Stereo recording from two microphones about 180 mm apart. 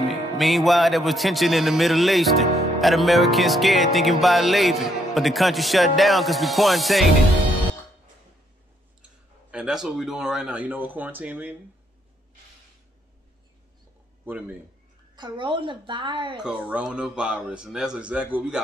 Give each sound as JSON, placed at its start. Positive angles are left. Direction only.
{"t": 0.1, "sound": "music", "side_deg": 0}
{"t": 9.5, "sound": "speech", "side_deg": -5}
{"t": 15.1, "sound": "a woman's voice", "side_deg": -25}
{"t": 16.4, "sound": "music", "side_deg": -5}